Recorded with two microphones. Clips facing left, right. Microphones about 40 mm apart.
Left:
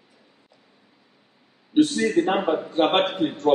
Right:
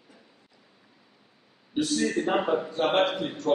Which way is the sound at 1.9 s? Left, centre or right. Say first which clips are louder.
Left 4 dB; left.